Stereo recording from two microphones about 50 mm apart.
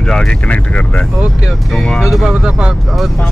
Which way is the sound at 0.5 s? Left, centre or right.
Left.